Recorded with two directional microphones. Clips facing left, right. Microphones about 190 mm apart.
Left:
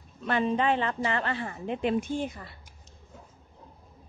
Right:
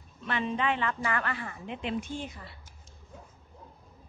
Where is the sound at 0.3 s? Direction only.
40° left (ahead or behind).